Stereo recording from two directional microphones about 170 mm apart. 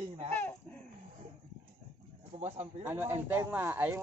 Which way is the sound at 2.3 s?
40° right (ahead or behind).